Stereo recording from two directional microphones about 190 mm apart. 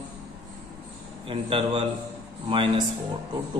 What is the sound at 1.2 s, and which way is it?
A man's voice, 30° right (ahead or behind).